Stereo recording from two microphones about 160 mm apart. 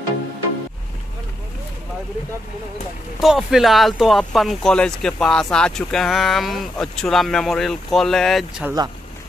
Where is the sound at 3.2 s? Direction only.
Centre (ahead or behind).